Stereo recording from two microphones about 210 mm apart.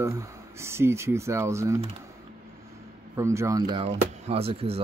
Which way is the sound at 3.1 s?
15° right (ahead or behind).